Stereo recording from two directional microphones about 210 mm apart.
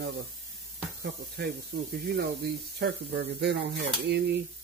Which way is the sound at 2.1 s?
50° right (ahead or behind).